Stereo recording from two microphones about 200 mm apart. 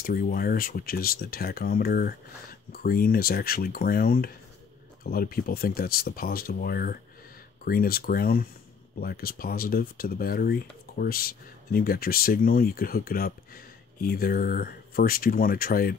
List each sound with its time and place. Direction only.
0.0 s speech: 45° left (ahead or behind)